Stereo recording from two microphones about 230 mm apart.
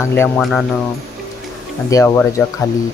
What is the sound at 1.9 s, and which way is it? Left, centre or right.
Speech, centre.